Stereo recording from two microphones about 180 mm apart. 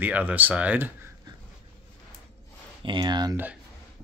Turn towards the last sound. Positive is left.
turn(degrees=-25)  # may be behind; listen again after turning